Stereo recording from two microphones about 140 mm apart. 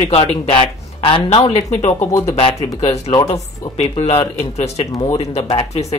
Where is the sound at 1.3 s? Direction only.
55° left (ahead or behind).